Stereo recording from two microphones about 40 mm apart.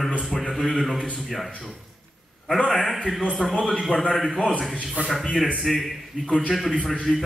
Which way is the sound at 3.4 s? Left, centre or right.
Left.